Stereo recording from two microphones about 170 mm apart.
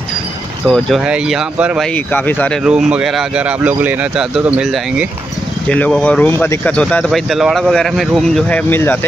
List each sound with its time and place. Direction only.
0.7 s speech: centre (ahead or behind)
2.1 s speech: 10° left (ahead or behind)
2.6 s speech: 5° right (ahead or behind)
5.7 s speech: 5° left (ahead or behind)